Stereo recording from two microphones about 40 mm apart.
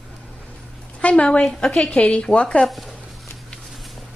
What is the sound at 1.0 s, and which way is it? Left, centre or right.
A woman's voice, left.